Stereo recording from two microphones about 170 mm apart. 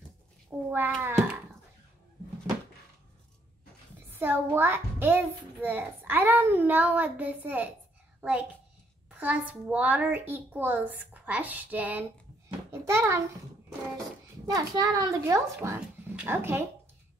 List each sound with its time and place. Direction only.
0.7 s a child's voice: 10° right (ahead or behind)
1.1 s a sound: 10° right (ahead or behind)
4.1 s a child's voice: 15° right (ahead or behind)
14.5 s a child's voice: 25° right (ahead or behind)